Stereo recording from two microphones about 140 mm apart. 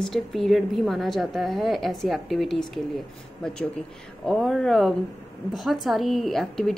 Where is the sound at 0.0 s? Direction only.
Centre (ahead or behind).